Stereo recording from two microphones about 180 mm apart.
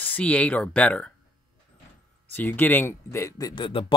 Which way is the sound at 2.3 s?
10° left (ahead or behind).